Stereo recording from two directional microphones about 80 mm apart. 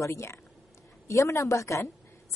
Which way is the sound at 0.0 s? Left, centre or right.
Left.